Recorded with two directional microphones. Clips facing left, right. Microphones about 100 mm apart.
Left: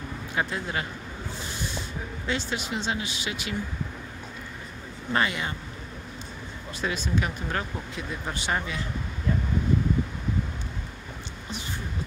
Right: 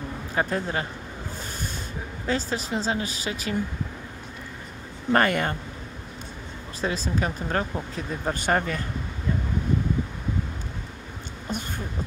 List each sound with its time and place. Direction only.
0.3 s speech: 35° right (ahead or behind)
2.2 s speech: 40° right (ahead or behind)
5.1 s speech: 50° right (ahead or behind)
6.8 s speech: 35° right (ahead or behind)